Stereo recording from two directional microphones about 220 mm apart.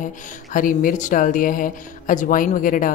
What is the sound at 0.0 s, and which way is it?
Speech, 35° left (ahead or behind).